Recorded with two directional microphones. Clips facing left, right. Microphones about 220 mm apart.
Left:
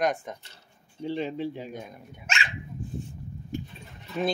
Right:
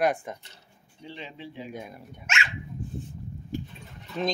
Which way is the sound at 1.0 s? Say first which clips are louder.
Left 11 dB; 45° left (ahead or behind).